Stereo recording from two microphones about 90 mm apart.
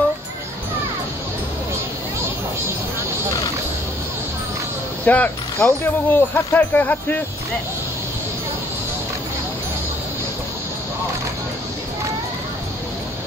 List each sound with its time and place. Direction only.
5.0 s speech: 20° left (ahead or behind)